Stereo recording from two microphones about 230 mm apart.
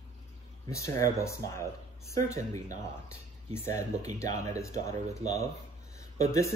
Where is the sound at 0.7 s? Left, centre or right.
Centre.